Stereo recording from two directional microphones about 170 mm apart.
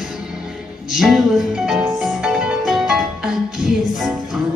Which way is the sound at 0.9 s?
Centre (ahead or behind).